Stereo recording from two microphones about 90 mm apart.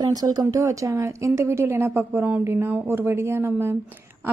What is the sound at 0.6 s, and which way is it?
A woman's voice, 35° right (ahead or behind).